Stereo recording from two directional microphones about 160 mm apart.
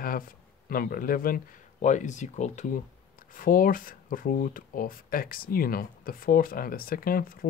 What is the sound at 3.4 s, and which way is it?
Speech, 60° left (ahead or behind).